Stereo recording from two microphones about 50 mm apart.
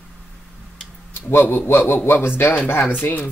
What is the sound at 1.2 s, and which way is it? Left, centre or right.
Speech, left.